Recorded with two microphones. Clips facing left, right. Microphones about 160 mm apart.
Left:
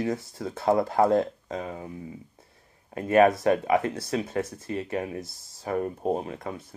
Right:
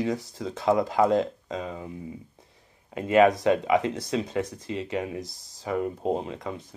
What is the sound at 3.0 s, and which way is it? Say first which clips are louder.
Speech: even; 20° right (ahead or behind).